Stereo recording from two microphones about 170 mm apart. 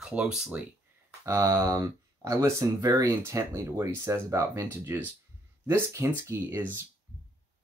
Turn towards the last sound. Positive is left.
turn(degrees=-10)  # may be behind; listen again after turning